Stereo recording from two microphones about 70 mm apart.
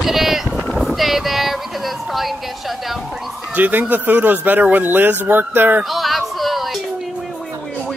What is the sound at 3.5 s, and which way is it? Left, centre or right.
Speech, right.